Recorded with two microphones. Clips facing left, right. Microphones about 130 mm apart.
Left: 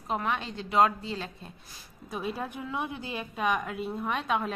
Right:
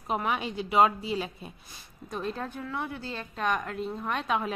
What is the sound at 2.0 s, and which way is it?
A woman's voice, 5° left (ahead or behind).